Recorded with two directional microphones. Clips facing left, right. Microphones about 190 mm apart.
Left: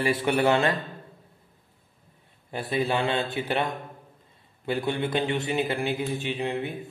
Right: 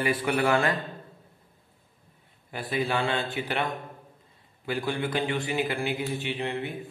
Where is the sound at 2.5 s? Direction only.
25° left (ahead or behind).